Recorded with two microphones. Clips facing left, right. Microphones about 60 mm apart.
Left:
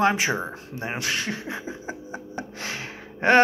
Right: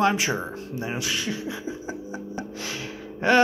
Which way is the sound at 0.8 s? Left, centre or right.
Left.